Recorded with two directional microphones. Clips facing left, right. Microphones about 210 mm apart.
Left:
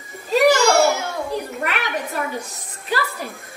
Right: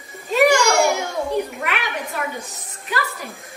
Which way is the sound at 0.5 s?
15° right (ahead or behind).